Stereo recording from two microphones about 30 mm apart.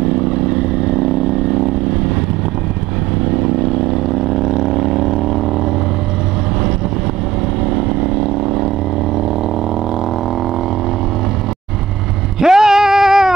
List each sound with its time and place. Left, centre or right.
0.1 s vehicle: centre
3.3 s vehicle: centre
7.7 s vehicle: centre
12.4 s a sound: centre